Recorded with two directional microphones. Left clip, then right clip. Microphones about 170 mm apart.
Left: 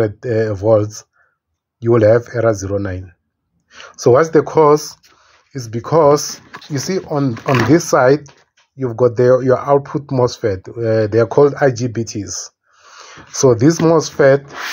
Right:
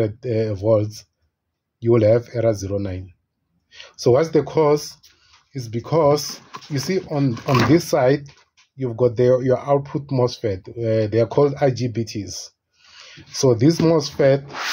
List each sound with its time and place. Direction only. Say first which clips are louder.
0.0 s speech: left 5 dB; 15° left (ahead or behind)